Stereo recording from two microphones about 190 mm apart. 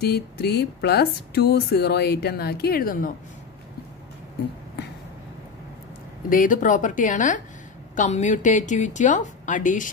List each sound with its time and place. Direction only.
0.0 s speech: 60° left (ahead or behind)
6.2 s a woman's voice: 45° left (ahead or behind)